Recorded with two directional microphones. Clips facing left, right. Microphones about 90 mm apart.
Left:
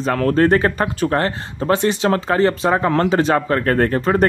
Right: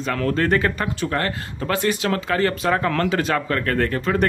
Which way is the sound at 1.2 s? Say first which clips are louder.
Left 4 dB; 30° left (ahead or behind).